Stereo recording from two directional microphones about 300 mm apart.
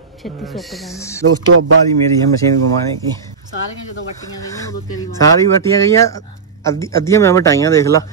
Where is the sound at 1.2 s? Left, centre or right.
Right.